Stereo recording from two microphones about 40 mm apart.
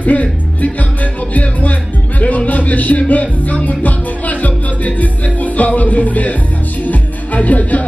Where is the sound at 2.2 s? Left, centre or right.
Left.